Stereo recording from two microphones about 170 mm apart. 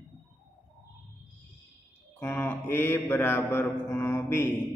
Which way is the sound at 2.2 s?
15° left (ahead or behind).